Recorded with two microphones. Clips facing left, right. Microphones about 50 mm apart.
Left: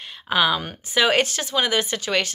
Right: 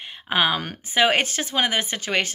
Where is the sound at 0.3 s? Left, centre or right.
Right.